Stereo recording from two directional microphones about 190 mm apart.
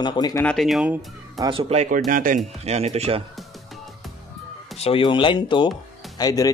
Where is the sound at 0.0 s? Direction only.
20° left (ahead or behind).